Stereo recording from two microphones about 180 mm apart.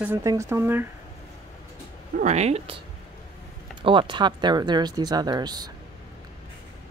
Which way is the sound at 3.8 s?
30° right (ahead or behind).